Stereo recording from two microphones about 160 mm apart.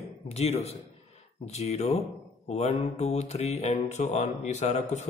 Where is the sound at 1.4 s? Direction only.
45° left (ahead or behind).